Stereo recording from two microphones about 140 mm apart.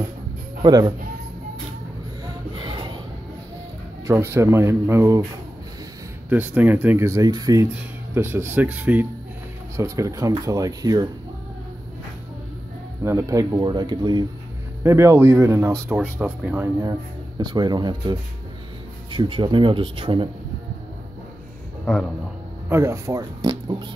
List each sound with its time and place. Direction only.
0.6 s speech: 30° right (ahead or behind)
2.5 s a sound: 35° right (ahead or behind)
4.1 s speech: 20° right (ahead or behind)
6.2 s speech: 15° right (ahead or behind)
7.6 s speech: 15° right (ahead or behind)
9.8 s speech: 20° right (ahead or behind)
13.0 s speech: 20° right (ahead or behind)
14.8 s speech: 20° right (ahead or behind)
17.4 s speech: 30° right (ahead or behind)
21.9 s speech: 5° left (ahead or behind)
22.7 s speech: 20° right (ahead or behind)
23.4 s a sound: 30° right (ahead or behind)